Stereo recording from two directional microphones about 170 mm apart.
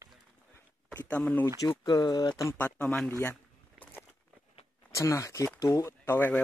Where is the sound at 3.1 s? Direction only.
15° left (ahead or behind).